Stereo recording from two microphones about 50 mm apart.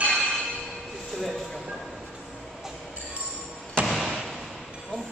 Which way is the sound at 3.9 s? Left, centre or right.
Centre.